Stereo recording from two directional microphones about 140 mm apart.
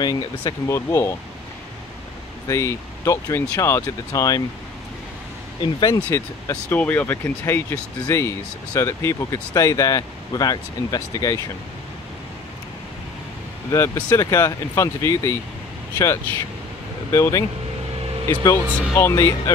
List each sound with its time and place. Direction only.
0.0 s speech: 35° left (ahead or behind)
0.7 s speech: 20° left (ahead or behind)
2.4 s speech: 20° left (ahead or behind)
5.6 s speech: 30° left (ahead or behind)
6.0 s speech: 20° left (ahead or behind)
13.7 s speech: 25° left (ahead or behind)
17.1 s speech: 20° left (ahead or behind)